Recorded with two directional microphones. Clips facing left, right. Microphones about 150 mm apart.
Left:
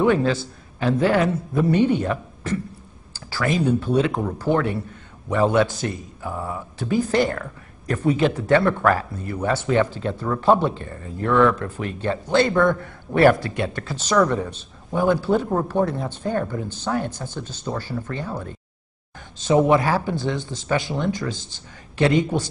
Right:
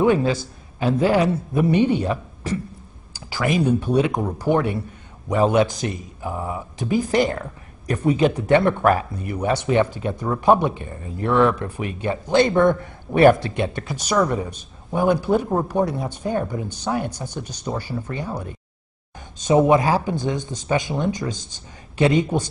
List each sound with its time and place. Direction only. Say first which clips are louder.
0.0 s speech: right 1 dB; 15° right (ahead or behind)